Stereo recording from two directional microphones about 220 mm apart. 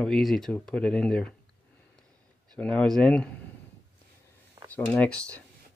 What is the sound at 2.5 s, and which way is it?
Speech, 5° left (ahead or behind).